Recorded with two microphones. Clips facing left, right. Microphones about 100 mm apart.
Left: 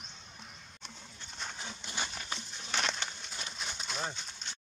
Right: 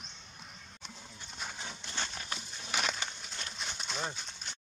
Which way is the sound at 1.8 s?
10° left (ahead or behind).